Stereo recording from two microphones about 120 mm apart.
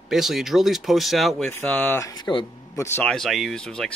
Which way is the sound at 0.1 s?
5° right (ahead or behind).